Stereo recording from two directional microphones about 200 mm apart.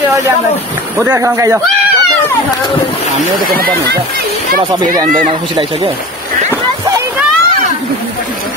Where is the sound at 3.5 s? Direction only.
50° right (ahead or behind).